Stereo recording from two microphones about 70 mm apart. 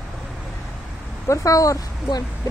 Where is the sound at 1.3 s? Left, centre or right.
Left.